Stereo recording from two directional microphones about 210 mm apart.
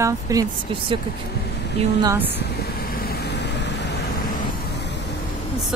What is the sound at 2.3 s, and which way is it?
Vehicle, 45° left (ahead or behind).